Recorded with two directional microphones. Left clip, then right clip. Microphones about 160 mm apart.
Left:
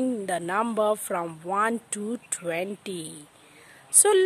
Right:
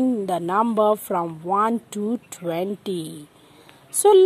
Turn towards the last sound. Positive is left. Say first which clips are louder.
# right 6 dB
turn(degrees=0)  # may be behind; listen again after turning